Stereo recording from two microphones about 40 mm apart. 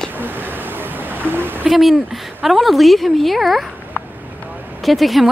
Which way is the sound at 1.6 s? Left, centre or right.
Centre.